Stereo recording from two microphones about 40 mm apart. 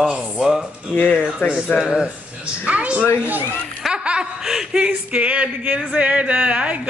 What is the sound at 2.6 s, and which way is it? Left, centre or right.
Speech, right.